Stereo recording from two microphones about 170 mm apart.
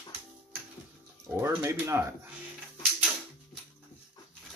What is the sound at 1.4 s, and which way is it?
Speech, 15° right (ahead or behind).